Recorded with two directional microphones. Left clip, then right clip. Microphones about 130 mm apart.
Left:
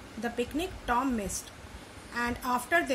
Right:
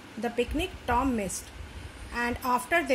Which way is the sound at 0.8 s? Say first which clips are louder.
Right 2 dB; 60° right (ahead or behind).